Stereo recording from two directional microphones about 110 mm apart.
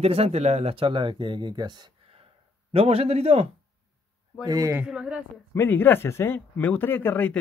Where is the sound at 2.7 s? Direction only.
65° right (ahead or behind).